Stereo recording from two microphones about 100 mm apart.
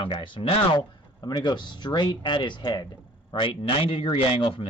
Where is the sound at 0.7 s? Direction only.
45° left (ahead or behind).